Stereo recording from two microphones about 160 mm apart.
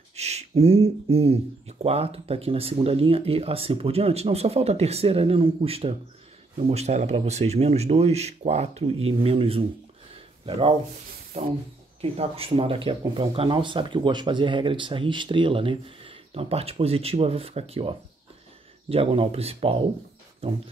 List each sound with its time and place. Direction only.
0.1 s speech: 45° right (ahead or behind)